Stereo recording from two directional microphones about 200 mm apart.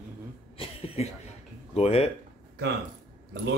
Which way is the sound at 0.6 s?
30° left (ahead or behind).